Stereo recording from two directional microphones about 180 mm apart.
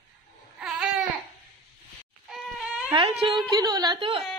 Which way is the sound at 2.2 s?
Centre (ahead or behind).